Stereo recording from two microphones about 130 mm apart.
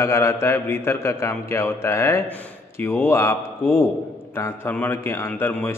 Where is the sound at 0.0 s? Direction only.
20° left (ahead or behind).